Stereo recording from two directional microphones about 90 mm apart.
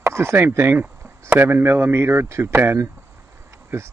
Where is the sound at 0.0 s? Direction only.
30° right (ahead or behind).